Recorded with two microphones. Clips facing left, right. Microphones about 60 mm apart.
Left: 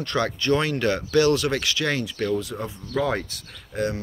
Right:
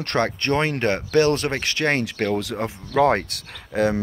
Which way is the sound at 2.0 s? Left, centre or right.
Right.